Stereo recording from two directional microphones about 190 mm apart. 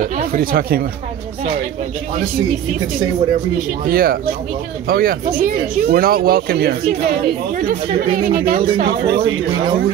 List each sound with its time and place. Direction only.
0.3 s speech: 50° right (ahead or behind)
3.8 s speech: 50° right (ahead or behind)
8.2 s speech: 50° right (ahead or behind)